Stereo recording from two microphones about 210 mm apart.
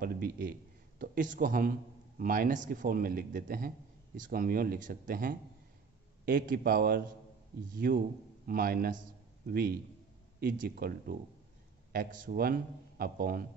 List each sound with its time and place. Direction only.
0.0 s a man's voice: 45° right (ahead or behind)